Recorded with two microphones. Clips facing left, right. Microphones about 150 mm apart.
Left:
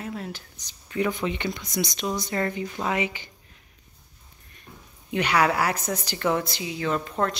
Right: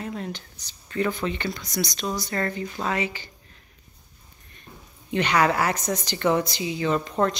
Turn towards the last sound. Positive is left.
turn(degrees=5)  # may be behind; listen again after turning